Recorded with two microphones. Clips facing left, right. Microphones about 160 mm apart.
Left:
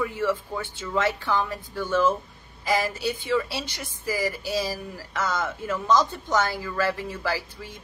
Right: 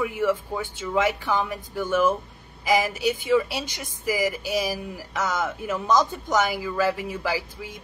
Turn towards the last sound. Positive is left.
turn(degrees=-15)  # may be behind; listen again after turning